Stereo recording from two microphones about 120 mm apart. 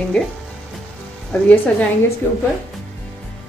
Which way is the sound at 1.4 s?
10° left (ahead or behind).